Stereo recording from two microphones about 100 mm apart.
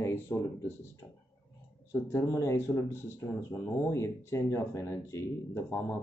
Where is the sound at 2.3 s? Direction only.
30° left (ahead or behind).